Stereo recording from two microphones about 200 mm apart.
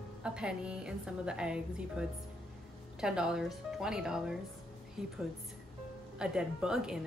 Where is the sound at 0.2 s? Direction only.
5° right (ahead or behind).